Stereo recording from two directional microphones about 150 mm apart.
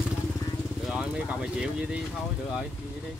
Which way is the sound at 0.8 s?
5° right (ahead or behind).